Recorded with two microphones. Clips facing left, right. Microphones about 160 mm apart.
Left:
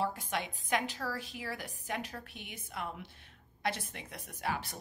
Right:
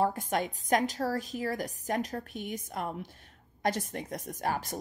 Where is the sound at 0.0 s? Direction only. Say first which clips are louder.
Right 6 dB; 50° right (ahead or behind).